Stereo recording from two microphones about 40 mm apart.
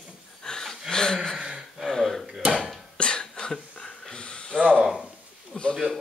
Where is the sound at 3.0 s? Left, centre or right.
Left.